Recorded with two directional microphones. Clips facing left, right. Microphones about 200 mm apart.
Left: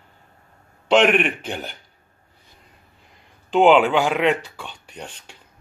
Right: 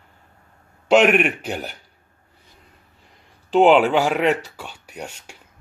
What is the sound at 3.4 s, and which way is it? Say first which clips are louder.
Speech: right 1 dB; 5° right (ahead or behind).